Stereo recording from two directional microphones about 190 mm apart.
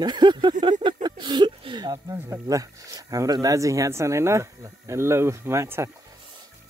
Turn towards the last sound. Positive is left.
turn(degrees=-15)  # may be behind; listen again after turning